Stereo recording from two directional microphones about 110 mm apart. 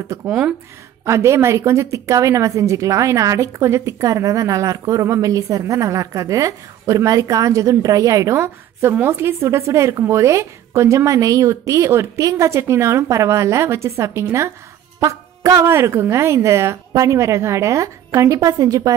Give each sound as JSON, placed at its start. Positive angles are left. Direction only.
{"t": 0.3, "sound": "speech", "side_deg": -10}
{"t": 1.0, "sound": "a woman's voice", "side_deg": -25}